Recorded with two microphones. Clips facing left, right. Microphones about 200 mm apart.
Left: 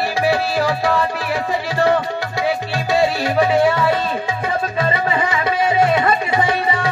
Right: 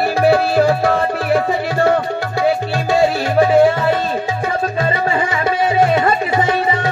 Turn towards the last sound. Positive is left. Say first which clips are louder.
# right 2 dB
turn(degrees=-50)  # may be behind; listen again after turning